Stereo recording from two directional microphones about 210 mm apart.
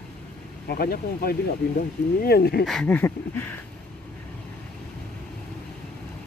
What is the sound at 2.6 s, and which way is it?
Speech, 5° left (ahead or behind).